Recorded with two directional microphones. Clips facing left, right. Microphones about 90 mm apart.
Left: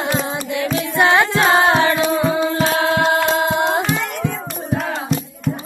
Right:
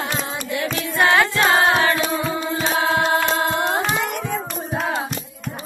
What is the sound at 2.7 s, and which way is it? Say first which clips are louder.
Singing: left 2 dB; 90° left.